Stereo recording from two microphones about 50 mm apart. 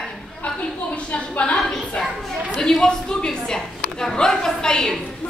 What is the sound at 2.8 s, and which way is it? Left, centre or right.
A woman's voice, centre.